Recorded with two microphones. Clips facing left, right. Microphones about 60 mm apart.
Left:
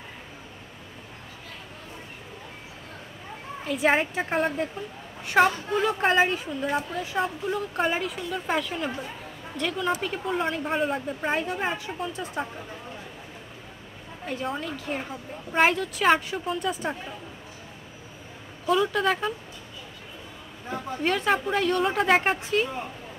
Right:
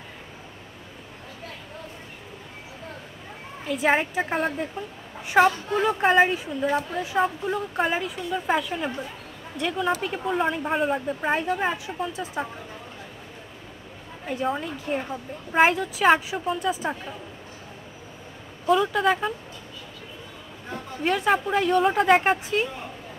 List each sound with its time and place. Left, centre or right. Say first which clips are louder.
3.6 s speech: right 1 dB; centre
14.2 s speech: right 3 dB; centre
18.7 s speech: right 2 dB; centre
21.0 s speech: right 2 dB; centre